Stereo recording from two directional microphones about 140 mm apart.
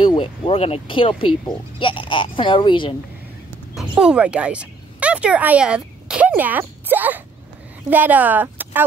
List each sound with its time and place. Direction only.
0.0 s speech: 35° left (ahead or behind)
3.7 s speech: 5° right (ahead or behind)